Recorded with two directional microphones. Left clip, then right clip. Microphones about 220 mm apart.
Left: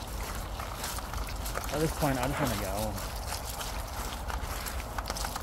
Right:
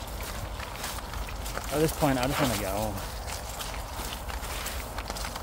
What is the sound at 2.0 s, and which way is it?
Speech, 35° right (ahead or behind).